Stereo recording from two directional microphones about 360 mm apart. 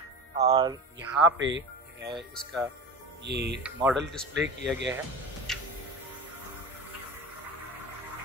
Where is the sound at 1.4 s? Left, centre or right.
Right.